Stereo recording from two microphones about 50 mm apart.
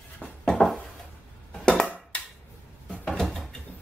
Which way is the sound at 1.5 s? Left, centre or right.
Centre.